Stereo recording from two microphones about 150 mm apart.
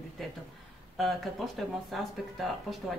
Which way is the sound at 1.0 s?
Centre (ahead or behind).